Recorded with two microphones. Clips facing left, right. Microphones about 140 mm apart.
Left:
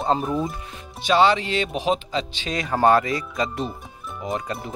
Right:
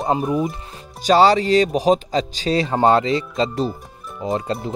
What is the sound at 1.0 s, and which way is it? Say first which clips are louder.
Speech: right 4 dB; 40° right (ahead or behind).